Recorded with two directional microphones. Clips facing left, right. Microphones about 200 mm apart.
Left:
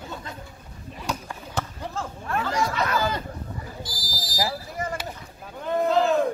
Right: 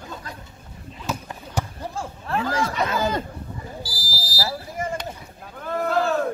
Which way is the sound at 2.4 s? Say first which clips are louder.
Right 1 dB; 20° right (ahead or behind).